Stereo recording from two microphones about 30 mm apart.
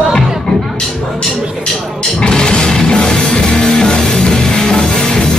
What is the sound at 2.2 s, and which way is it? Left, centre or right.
Music, left.